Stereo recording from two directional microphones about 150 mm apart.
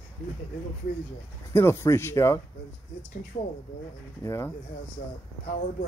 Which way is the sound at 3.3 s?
55° left (ahead or behind).